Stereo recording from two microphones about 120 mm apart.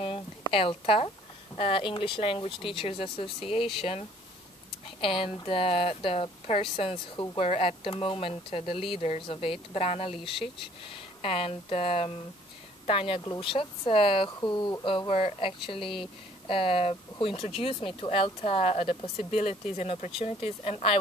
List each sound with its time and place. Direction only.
0.5 s speech: 50° left (ahead or behind)
5.0 s speech: 50° left (ahead or behind)